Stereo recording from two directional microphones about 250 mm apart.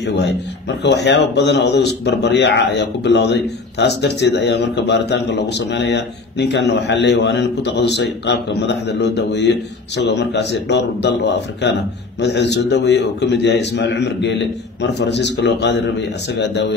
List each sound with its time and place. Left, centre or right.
0.0 s a man's voice: left
12.2 s a man's voice: left